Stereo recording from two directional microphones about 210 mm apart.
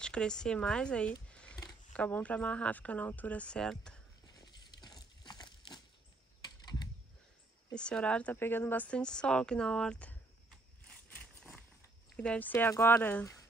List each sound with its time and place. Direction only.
0.0 s speech: 5° left (ahead or behind)
1.3 s a sound: 5° left (ahead or behind)
2.0 s speech: 5° left (ahead or behind)
4.4 s crumpling: 20° left (ahead or behind)
6.4 s typing: 20° left (ahead or behind)
7.7 s speech: 5° left (ahead or behind)